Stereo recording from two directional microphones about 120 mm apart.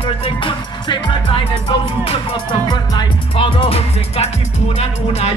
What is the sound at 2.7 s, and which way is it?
Music, 40° left (ahead or behind).